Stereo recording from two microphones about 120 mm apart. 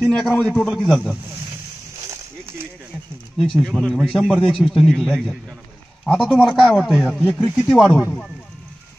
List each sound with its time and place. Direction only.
0.0 s a man's voice: 5° left (ahead or behind)
2.0 s a sound: 20° right (ahead or behind)
3.3 s a man's voice: 5° left (ahead or behind)
7.0 s speech: 10° right (ahead or behind)
7.5 s a man's voice: centre (ahead or behind)